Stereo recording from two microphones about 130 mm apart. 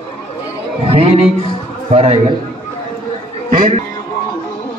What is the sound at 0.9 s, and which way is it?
A man's voice, 50° right (ahead or behind).